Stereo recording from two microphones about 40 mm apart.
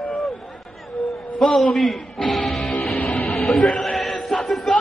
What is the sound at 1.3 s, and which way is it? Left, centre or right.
Speech, centre.